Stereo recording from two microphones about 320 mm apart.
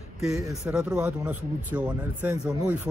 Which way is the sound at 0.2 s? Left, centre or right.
Centre.